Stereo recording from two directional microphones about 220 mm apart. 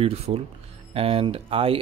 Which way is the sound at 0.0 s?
25° right (ahead or behind).